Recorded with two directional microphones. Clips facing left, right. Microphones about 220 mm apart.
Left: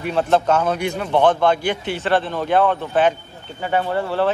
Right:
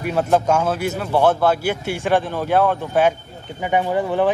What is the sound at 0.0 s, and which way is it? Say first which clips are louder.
A man's voice: even; 10° right (ahead or behind).